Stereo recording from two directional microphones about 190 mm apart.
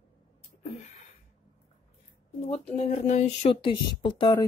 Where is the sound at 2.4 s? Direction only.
35° left (ahead or behind).